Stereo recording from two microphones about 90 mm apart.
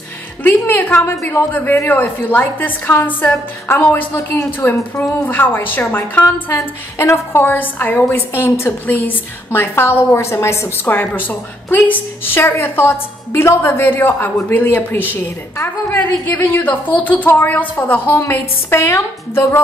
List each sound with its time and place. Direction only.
0.4 s a woman's voice: 20° left (ahead or behind)